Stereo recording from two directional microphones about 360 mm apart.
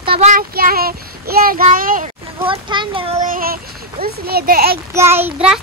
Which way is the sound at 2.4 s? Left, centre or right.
Centre.